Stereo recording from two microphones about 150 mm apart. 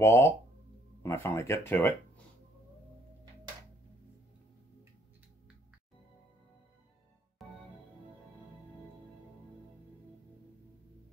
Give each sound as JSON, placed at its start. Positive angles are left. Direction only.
{"t": 0.0, "sound": "speech", "side_deg": 15}
{"t": 7.4, "sound": "music", "side_deg": 0}